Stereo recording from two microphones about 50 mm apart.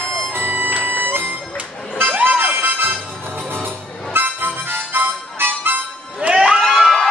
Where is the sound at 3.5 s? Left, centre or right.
Right.